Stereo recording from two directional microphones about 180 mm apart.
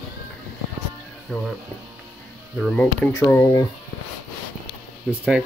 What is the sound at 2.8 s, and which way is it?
Speech, 15° left (ahead or behind).